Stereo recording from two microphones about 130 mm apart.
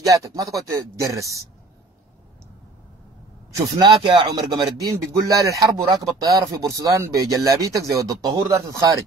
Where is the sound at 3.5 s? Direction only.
35° right (ahead or behind).